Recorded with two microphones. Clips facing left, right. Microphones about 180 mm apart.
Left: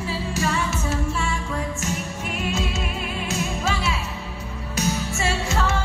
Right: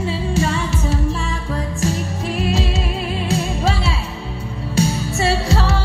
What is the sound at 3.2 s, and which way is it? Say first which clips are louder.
Music: right 5 dB; 35° right (ahead or behind).